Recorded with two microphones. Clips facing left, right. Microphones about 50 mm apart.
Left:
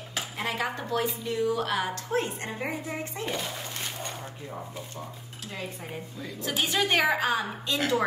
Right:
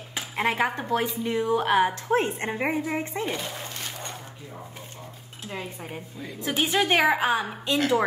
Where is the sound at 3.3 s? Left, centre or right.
Centre.